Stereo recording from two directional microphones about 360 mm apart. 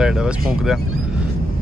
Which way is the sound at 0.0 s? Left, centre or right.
Centre.